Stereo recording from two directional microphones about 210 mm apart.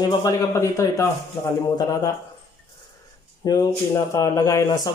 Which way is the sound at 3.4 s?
15° left (ahead or behind).